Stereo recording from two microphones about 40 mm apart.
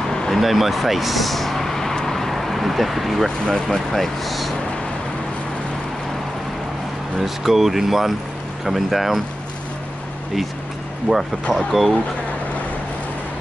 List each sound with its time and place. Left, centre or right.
0.3 s speech: centre
2.0 s vehicle: centre
3.3 s speech: centre
3.7 s speech: centre
7.2 s speech: centre
11.1 s speech: left
11.5 s speech: centre